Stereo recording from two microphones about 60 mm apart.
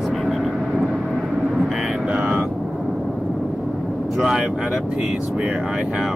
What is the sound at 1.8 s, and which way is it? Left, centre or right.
Vehicle, centre.